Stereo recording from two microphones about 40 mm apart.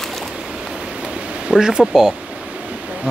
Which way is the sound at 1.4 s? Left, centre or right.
Centre.